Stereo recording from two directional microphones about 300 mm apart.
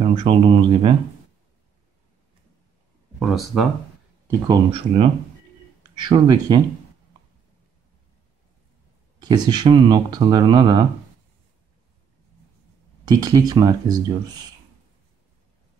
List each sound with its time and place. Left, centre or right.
0.0 s speech: centre
3.2 s speech: centre
4.3 s speech: centre
9.2 s speech: centre
13.0 s speech: centre